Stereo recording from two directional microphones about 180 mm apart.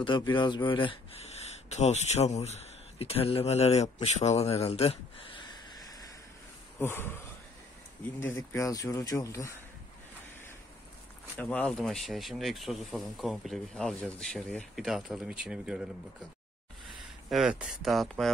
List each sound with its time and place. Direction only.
0.0 s speech: 25° left (ahead or behind)
6.8 s speech: 15° left (ahead or behind)
8.3 s speech: 15° left (ahead or behind)
11.3 s speech: 10° left (ahead or behind)
17.3 s speech: 5° right (ahead or behind)